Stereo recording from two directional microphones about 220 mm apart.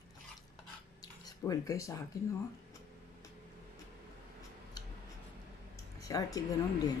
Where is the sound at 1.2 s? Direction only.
15° left (ahead or behind).